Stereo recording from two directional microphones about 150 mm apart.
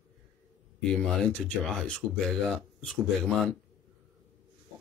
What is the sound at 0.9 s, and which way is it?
Speech, 5° left (ahead or behind).